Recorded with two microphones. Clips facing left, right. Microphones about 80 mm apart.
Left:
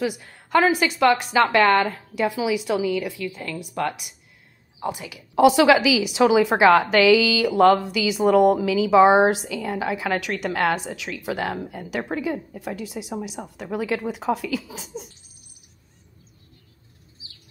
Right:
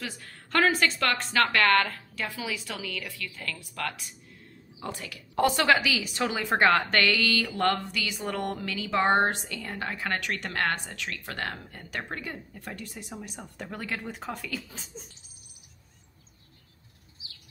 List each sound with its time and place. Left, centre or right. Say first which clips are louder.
0.0 s a woman's voice: left 12 dB; centre